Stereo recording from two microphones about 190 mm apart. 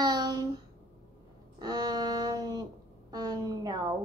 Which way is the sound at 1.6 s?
20° right (ahead or behind).